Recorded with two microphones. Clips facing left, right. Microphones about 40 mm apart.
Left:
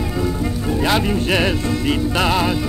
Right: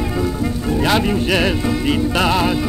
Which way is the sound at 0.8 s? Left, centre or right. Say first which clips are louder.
Right 1 dB; centre.